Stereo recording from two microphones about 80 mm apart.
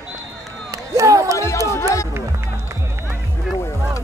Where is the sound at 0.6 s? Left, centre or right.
Right.